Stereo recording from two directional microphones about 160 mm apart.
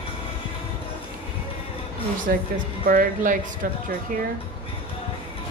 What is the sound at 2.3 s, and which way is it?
Speech, 70° right (ahead or behind).